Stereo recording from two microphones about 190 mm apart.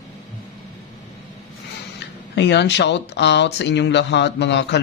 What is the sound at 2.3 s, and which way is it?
Speech, 65° left (ahead or behind).